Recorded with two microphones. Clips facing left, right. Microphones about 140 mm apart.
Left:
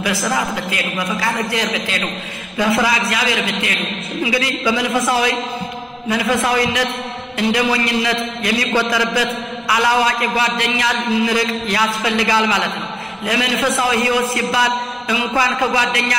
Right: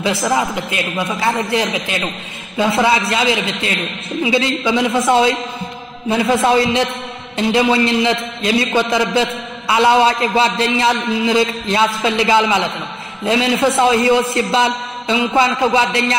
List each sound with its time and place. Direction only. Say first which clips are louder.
0.0 s a man's voice: right 3 dB; 25° right (ahead or behind)